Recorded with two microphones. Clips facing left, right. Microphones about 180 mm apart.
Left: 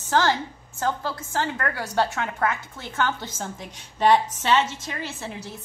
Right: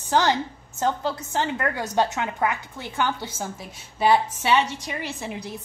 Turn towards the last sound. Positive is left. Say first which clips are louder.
# right 2 dB
turn(degrees=-15)  # may be behind; listen again after turning